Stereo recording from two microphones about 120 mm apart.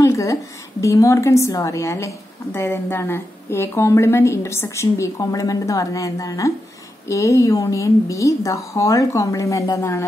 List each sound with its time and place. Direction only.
0.0 s a woman's voice: 25° left (ahead or behind)